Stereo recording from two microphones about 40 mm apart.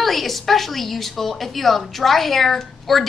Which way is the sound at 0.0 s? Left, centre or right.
Centre.